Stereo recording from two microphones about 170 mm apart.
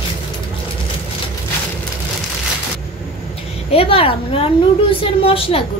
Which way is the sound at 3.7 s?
35° left (ahead or behind).